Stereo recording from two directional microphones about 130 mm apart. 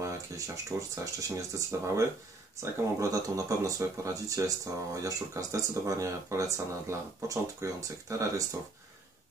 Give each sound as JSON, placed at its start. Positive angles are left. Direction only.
{"t": 0.7, "sound": "speech", "side_deg": -25}